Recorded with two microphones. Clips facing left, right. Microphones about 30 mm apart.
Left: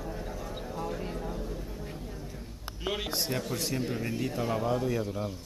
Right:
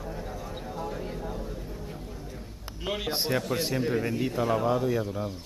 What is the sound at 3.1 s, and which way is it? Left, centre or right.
Speech, right.